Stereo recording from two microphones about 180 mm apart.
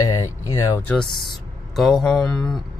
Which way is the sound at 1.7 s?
Centre (ahead or behind).